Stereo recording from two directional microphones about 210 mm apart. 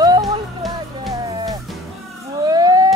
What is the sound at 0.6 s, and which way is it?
Music, centre (ahead or behind).